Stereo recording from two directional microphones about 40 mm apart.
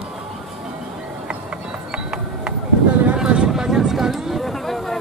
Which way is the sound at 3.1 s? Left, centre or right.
Right.